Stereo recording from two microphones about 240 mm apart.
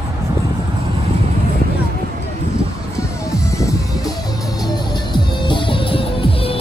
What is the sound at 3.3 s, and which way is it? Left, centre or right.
Music, centre.